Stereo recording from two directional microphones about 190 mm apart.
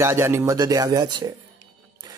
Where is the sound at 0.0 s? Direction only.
15° right (ahead or behind).